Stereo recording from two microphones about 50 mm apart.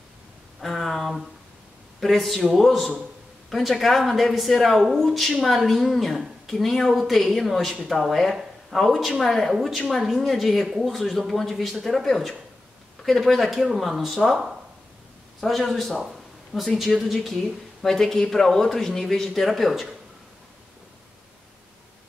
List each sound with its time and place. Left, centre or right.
0.6 s speech: centre
11.0 s speech: centre
16.0 s a sound: centre
16.8 s speech: centre